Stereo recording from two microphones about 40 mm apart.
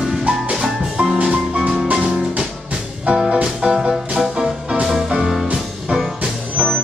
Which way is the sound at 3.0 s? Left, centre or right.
Right.